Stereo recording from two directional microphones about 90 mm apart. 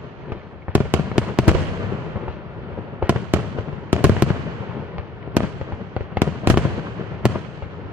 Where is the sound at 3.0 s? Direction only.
20° right (ahead or behind).